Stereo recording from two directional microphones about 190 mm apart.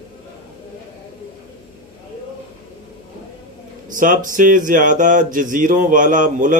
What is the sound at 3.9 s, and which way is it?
Speech, 45° right (ahead or behind).